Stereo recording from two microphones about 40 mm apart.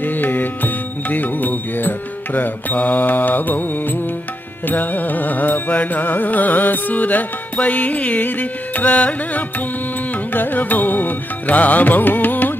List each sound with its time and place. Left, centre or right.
0.0 s music: left
4.6 s carnatic music: left
10.3 s carnatic music: left